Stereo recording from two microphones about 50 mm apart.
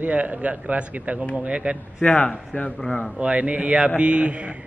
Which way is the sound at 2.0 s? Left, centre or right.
Left.